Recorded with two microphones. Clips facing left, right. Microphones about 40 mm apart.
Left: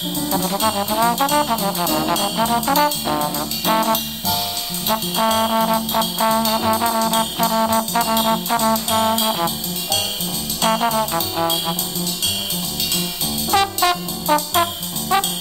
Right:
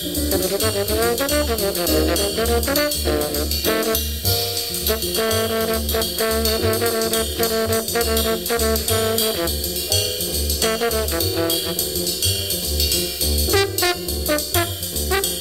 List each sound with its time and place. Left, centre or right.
0.3 s trombone: centre
10.6 s trombone: centre
13.5 s brass instrument: centre